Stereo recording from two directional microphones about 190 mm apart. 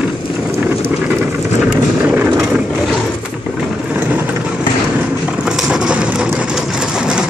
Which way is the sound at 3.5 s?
10° right (ahead or behind).